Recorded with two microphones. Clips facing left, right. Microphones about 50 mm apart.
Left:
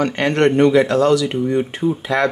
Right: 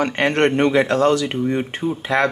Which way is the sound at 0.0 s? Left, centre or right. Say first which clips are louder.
Left 1 dB; right.